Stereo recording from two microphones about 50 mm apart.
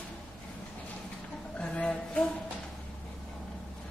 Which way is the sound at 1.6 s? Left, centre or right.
Centre.